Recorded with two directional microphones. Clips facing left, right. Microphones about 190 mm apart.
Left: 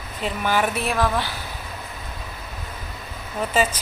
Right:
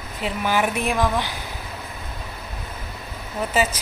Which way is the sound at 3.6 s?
5° right (ahead or behind).